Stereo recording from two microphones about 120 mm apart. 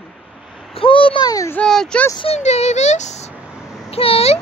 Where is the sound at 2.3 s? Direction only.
65° left (ahead or behind).